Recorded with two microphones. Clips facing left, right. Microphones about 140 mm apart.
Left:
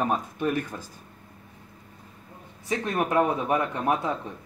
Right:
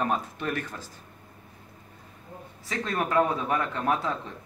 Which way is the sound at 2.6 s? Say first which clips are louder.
Left 3 dB; 15° left (ahead or behind).